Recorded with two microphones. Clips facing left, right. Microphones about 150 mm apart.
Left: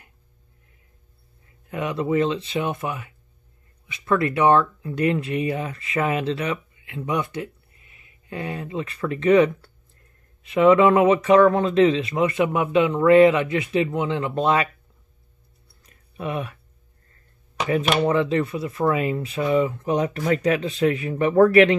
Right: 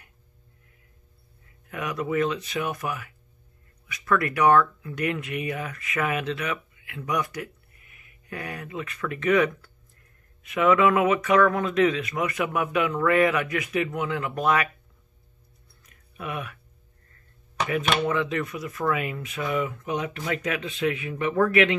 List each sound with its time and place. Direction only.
1.7 s speech: 25° left (ahead or behind)
15.8 s a sound: 30° left (ahead or behind)
18.0 s speech: 30° left (ahead or behind)